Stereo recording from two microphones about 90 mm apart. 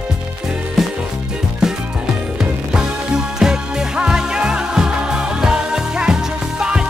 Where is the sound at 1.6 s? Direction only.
10° right (ahead or behind).